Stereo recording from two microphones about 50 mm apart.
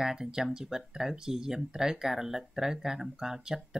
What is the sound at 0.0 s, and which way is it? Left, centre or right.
Speech, centre.